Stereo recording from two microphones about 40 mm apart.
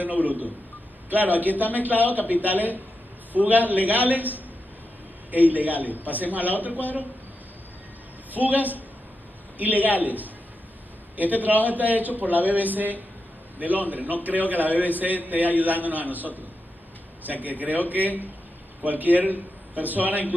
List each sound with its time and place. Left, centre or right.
0.0 s a man's voice: right
8.3 s a man's voice: right